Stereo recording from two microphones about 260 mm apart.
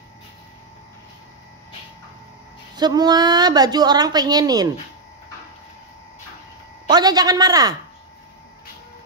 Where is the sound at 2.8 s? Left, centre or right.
Centre.